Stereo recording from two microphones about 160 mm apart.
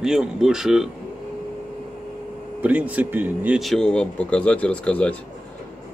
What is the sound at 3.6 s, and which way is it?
Speech, 5° left (ahead or behind).